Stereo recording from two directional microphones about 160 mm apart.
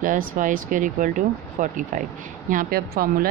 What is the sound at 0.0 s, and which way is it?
Speech, 55° right (ahead or behind).